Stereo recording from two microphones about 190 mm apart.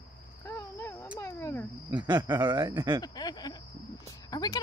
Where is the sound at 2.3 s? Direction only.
20° right (ahead or behind).